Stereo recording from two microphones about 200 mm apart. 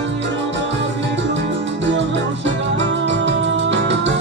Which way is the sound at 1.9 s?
65° right (ahead or behind).